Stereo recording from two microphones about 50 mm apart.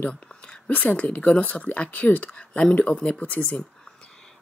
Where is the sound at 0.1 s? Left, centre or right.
Centre.